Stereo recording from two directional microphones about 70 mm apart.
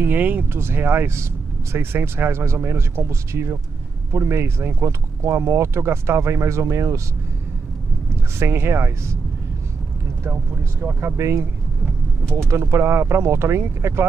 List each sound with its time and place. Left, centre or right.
0.0 s speech: right
0.5 s speech: right
8.4 s speech: right
10.3 s speech: right
11.1 s speech: right